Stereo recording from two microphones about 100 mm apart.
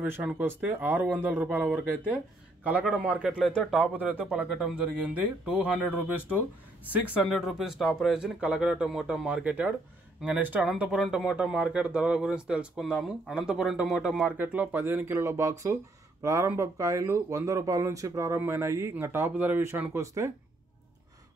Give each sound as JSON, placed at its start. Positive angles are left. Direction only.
{"t": 0.0, "sound": "speech", "side_deg": -20}
{"t": 2.9, "sound": "speech", "side_deg": -10}
{"t": 7.2, "sound": "speech", "side_deg": -5}
{"t": 14.2, "sound": "speech", "side_deg": -15}